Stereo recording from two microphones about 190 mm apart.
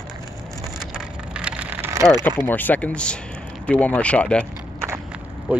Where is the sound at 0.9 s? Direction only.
5° right (ahead or behind).